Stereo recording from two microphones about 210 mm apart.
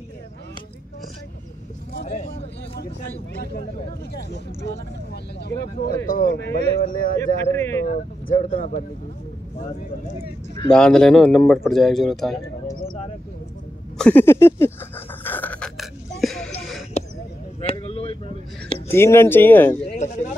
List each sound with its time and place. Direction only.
2.0 s speech: 35° left (ahead or behind)
4.1 s speech: 50° left (ahead or behind)
6.8 s speech: 40° left (ahead or behind)
7.5 s speech: 10° left (ahead or behind)
7.8 s speech: 40° left (ahead or behind)
10.7 s speech: 5° left (ahead or behind)
13.9 s a sound: 5° left (ahead or behind)
17.0 s a sound: 30° left (ahead or behind)
17.6 s vehicle: 30° left (ahead or behind)
18.9 s speech: 10° left (ahead or behind)
20.0 s speech: 35° left (ahead or behind)